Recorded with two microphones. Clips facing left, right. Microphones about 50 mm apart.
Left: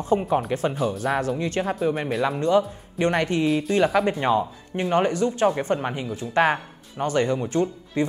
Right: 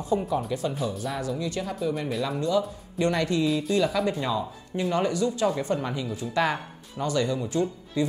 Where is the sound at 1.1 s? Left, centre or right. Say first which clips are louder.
Left 5 dB; left.